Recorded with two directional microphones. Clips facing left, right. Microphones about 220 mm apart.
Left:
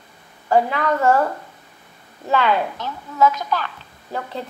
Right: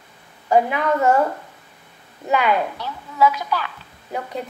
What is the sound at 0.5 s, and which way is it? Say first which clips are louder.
Speech: even; 15° right (ahead or behind).